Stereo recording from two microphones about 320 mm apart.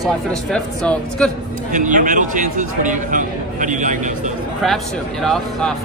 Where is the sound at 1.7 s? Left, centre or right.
Right.